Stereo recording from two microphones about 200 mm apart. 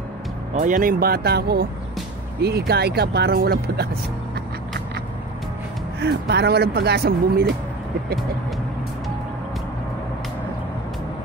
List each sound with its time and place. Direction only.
0.6 s speech: 40° right (ahead or behind)
5.9 s speech: 55° right (ahead or behind)